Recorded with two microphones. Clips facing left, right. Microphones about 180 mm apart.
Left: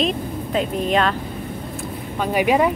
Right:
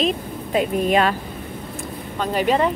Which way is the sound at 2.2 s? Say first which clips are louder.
Left 2 dB; 10° left (ahead or behind).